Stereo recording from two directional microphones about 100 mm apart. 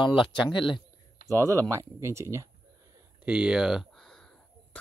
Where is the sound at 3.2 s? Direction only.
10° right (ahead or behind).